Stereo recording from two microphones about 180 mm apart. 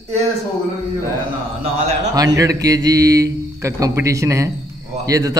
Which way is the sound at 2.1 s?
20° right (ahead or behind).